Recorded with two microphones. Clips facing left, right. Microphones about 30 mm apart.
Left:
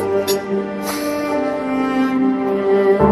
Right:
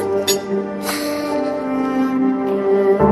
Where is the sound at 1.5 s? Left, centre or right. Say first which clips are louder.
Left 1 dB; left.